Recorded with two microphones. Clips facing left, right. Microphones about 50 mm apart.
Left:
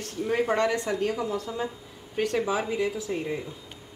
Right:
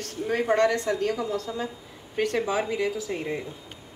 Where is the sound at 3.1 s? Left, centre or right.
Right.